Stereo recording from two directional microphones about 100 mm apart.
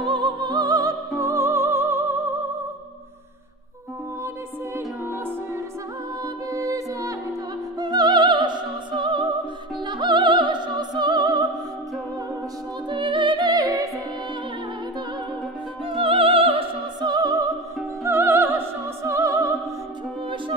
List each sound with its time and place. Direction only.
0.0 s music: 50° right (ahead or behind); by 2.1 s 20° right (ahead or behind)
6.5 s music: 35° right (ahead or behind)
7.8 s opera: 45° right (ahead or behind)
9.8 s music: 50° right (ahead or behind)
12.9 s music: 55° right (ahead or behind); by 13.8 s 40° right (ahead or behind)
15.9 s music: 65° right (ahead or behind)
17.0 s music: 40° right (ahead or behind)
18.0 s music: 25° right (ahead or behind)